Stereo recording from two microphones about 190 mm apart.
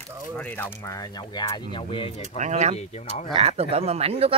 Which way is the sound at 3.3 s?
30° right (ahead or behind).